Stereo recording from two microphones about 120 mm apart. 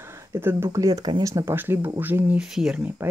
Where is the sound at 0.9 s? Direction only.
40° right (ahead or behind).